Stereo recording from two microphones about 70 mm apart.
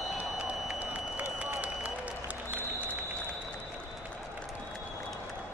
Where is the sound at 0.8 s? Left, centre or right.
Centre.